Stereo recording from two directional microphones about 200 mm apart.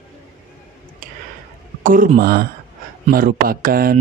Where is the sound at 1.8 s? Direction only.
45° right (ahead or behind).